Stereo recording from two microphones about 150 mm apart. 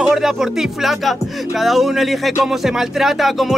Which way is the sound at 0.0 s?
5° right (ahead or behind).